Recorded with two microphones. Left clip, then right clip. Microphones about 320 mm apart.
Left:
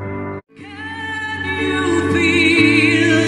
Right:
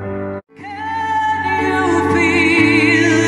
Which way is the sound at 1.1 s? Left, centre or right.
Centre.